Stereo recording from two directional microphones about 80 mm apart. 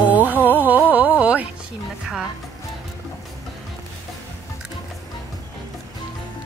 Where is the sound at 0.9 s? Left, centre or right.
Centre.